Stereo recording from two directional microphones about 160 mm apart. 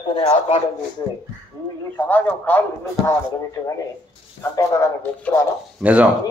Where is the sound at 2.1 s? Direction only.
10° left (ahead or behind).